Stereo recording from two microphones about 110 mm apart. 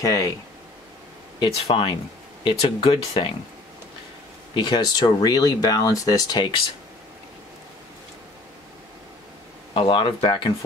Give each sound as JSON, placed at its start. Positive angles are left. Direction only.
{"t": 0.0, "sound": "speech", "side_deg": 30}
{"t": 1.4, "sound": "speech", "side_deg": 50}
{"t": 4.6, "sound": "speech", "side_deg": 40}
{"t": 9.8, "sound": "speech", "side_deg": 45}